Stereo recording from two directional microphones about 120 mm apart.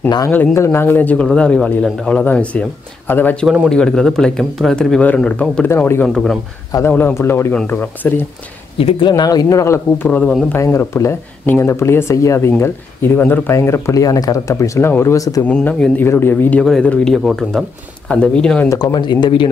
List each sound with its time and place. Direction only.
0.6 s a man's voice: 20° left (ahead or behind)
3.4 s speech: 5° right (ahead or behind)
5.7 s speech: 20° left (ahead or behind)
6.0 s speech: 5° left (ahead or behind)
6.9 s a man's voice: 15° left (ahead or behind)
8.7 s speech: 50° left (ahead or behind)
9.1 s speech: 35° left (ahead or behind)
10.0 s a man's voice: 10° left (ahead or behind); by 15.4 s 30° left (ahead or behind)
15.4 s a man's voice: 10° left (ahead or behind)
18.7 s speech: 30° left (ahead or behind)